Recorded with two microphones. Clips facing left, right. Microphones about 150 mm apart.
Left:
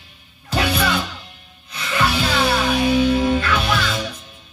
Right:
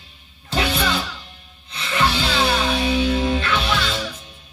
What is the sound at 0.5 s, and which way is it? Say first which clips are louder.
Music: left 2 dB; 30° right (ahead or behind).